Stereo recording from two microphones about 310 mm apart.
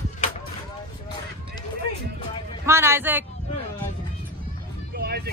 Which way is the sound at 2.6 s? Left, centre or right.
Centre.